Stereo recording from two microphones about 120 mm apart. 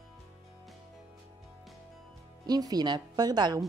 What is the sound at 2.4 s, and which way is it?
A woman's voice, 35° right (ahead or behind).